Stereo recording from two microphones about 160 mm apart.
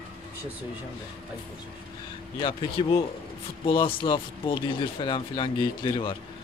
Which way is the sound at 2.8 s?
30° left (ahead or behind).